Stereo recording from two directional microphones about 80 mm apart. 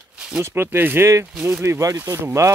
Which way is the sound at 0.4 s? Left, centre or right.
Right.